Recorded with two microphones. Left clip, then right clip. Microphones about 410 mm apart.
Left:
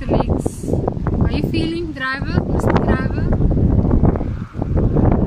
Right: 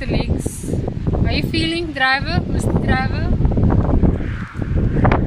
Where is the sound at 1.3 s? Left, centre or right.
Centre.